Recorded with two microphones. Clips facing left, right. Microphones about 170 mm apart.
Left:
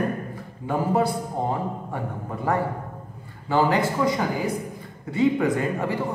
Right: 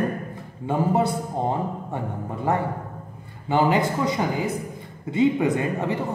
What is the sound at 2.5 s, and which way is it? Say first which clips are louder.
A man's voice: even; 20° right (ahead or behind).